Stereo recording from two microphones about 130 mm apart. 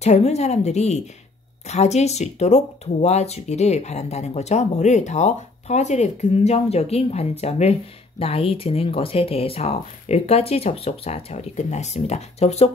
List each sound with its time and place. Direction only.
0.0 s speech: 60° left (ahead or behind)